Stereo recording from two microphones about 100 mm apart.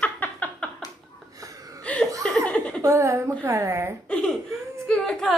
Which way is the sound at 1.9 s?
15° left (ahead or behind).